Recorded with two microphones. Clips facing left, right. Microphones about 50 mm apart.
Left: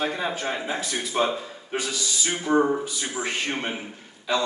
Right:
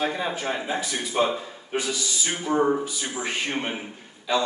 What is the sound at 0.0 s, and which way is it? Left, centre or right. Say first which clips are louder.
A man's voice: even; centre.